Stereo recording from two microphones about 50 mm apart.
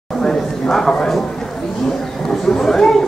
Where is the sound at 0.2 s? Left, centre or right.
Centre.